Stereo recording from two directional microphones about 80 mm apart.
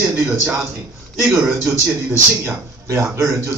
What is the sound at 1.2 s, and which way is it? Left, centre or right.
Speech, right.